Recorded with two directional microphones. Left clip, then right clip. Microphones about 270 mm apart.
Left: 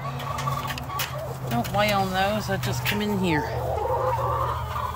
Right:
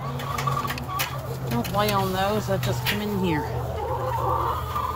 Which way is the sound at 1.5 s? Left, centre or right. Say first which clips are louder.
Left 1 dB; centre.